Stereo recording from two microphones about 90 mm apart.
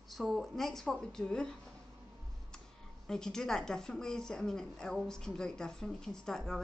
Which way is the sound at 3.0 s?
5° left (ahead or behind).